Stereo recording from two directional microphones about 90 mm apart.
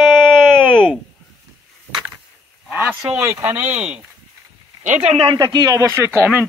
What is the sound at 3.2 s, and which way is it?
Speech, 30° right (ahead or behind).